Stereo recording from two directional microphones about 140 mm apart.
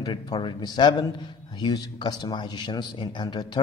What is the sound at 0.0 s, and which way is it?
A man's voice, 30° left (ahead or behind).